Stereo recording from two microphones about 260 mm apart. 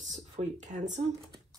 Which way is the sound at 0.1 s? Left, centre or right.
Right.